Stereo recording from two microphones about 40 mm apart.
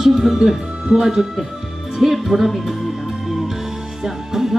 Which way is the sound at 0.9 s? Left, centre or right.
Centre.